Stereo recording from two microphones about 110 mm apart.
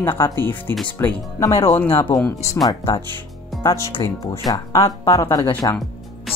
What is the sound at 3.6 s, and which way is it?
Speech, 25° left (ahead or behind).